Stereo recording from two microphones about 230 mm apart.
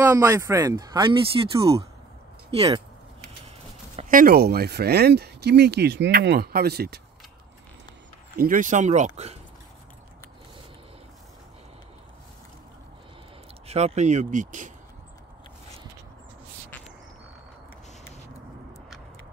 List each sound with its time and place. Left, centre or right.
0.1 s speech: centre
3.9 s speech: right
8.4 s speech: right
13.7 s speech: right